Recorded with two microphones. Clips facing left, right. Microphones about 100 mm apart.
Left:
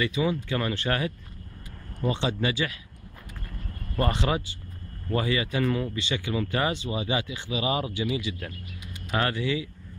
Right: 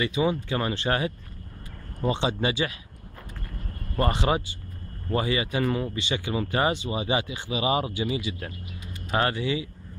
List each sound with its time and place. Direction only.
0.0 s speech: 25° right (ahead or behind)
4.3 s speech: 15° right (ahead or behind)
8.0 s speech: 35° right (ahead or behind)
9.2 s speech: 15° right (ahead or behind)